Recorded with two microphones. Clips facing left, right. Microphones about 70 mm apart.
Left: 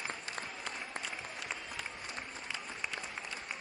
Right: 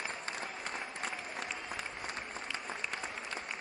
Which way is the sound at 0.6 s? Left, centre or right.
Right.